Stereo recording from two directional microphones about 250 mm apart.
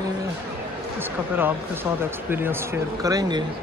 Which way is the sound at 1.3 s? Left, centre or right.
Centre.